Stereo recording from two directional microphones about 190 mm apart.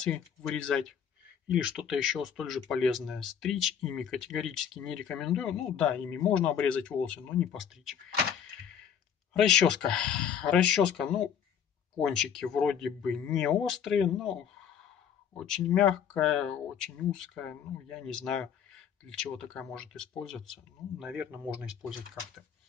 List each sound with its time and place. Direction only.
0.0 s speech: 5° left (ahead or behind)
9.3 s speech: 5° left (ahead or behind)